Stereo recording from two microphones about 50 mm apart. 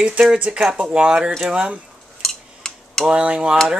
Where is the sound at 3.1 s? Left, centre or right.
Centre.